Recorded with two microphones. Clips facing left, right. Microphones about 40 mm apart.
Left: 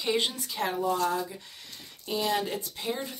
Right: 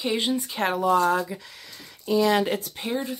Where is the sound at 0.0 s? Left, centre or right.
Centre.